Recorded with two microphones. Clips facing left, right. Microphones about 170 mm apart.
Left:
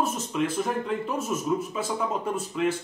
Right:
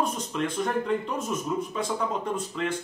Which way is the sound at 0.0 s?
5° left (ahead or behind).